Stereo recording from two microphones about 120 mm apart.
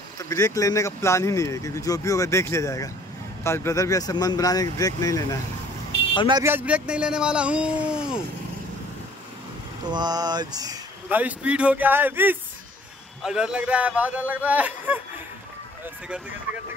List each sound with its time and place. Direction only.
0.2 s speech: 25° left (ahead or behind)
6.4 s speech: 15° right (ahead or behind)
9.8 s speech: 35° right (ahead or behind)
11.1 s speech: 15° right (ahead or behind)
16.5 s speech: 15° right (ahead or behind)